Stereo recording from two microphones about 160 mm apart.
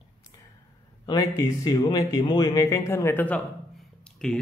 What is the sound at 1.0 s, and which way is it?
Speech, 20° left (ahead or behind).